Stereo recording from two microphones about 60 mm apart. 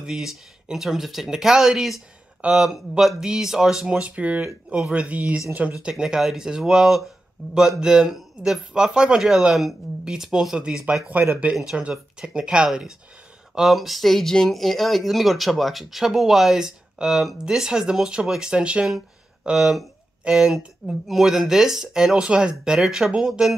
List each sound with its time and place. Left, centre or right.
0.0 s speech: centre
2.4 s speech: right
3.0 s speech: centre
3.9 s speech: centre
5.8 s speech: centre
13.6 s speech: centre